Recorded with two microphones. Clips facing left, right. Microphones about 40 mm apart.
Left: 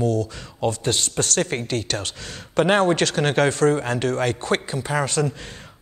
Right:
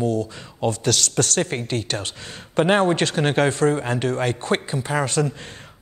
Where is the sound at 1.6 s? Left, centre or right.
Right.